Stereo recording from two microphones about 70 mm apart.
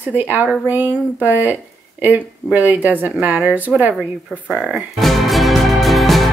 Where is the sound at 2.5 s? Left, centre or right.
Right.